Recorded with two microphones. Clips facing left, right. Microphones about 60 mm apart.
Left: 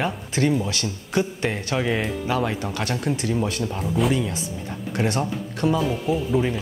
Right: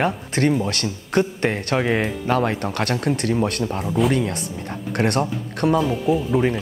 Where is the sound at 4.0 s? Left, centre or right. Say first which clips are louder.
Right 2 dB; centre.